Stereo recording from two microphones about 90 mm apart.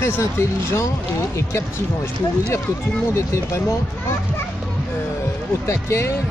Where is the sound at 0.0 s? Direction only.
30° left (ahead or behind).